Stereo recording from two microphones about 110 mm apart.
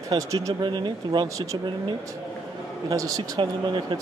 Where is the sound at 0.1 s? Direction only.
30° right (ahead or behind).